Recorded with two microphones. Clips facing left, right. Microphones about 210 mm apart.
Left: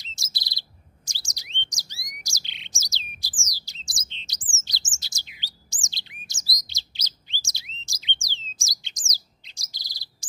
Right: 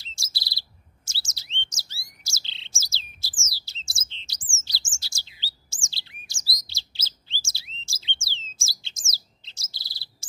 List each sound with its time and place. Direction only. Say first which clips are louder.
0.0 s chirp: even; 20° left (ahead or behind)
4.6 s bird: even; 20° left (ahead or behind)